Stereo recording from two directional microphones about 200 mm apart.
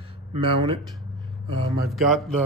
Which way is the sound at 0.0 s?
25° right (ahead or behind).